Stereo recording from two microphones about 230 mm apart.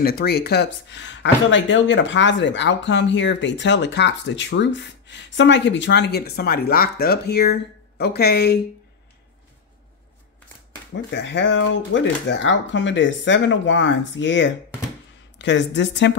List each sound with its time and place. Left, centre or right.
0.0 s speech: left
10.9 s speech: left